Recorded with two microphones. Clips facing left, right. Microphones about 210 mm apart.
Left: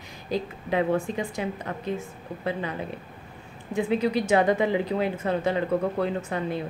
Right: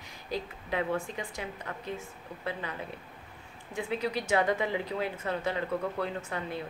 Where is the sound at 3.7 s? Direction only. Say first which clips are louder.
Left 8 dB; 20° left (ahead or behind).